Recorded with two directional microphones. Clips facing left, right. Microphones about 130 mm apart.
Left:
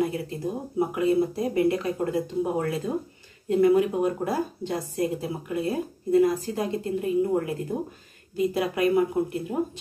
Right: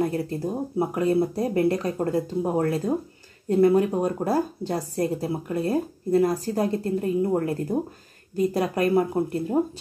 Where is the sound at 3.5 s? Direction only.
35° right (ahead or behind).